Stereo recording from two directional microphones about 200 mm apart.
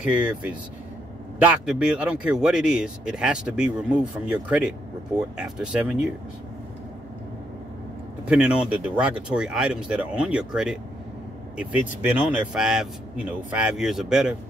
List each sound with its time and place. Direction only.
0.1 s speech: 5° right (ahead or behind)
8.3 s speech: 5° right (ahead or behind)
12.1 s speech: 5° right (ahead or behind)